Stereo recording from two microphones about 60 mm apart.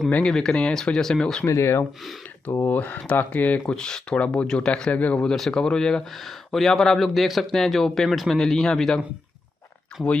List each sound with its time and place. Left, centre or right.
0.3 s speech: centre
1.4 s speech: left
2.6 s speech: left
3.7 s speech: centre
4.9 s speech: left
5.2 s a man's voice: centre